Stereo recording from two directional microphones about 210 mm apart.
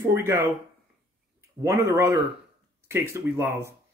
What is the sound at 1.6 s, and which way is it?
Speech, 15° right (ahead or behind).